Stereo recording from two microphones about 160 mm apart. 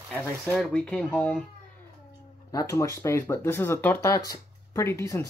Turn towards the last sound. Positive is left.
turn(degrees=15)  # may be behind; listen again after turning